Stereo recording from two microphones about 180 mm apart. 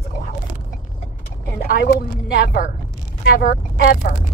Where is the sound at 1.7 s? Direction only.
60° left (ahead or behind).